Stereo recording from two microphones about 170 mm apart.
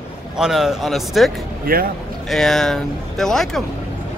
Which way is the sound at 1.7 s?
60° right (ahead or behind).